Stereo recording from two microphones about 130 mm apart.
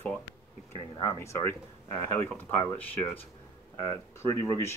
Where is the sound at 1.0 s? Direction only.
25° left (ahead or behind).